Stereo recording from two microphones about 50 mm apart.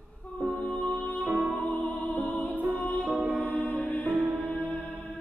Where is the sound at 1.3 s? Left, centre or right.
Right.